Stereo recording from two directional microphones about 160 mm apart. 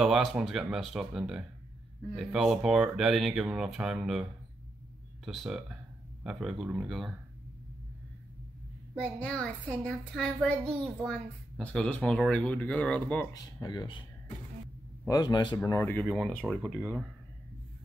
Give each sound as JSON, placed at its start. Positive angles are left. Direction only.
{"t": 0.0, "sound": "speech", "side_deg": 0}
{"t": 9.0, "sound": "speech", "side_deg": 10}
{"t": 13.3, "sound": "speech", "side_deg": 25}
{"t": 15.0, "sound": "speech", "side_deg": 25}
{"t": 16.1, "sound": "speech", "side_deg": 0}